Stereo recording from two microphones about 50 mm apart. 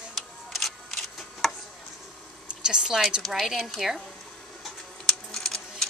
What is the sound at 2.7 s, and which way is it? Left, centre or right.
A woman's voice, centre.